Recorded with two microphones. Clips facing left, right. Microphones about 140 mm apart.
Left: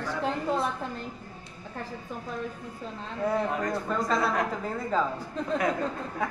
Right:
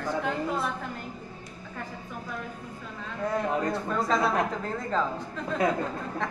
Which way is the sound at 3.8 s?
Centre (ahead or behind).